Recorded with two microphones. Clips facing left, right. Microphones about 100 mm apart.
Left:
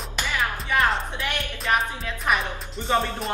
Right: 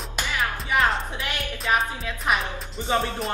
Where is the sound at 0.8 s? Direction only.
Centre (ahead or behind).